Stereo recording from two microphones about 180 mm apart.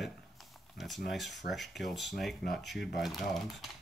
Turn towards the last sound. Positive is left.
turn(degrees=0)  # may be behind; listen again after turning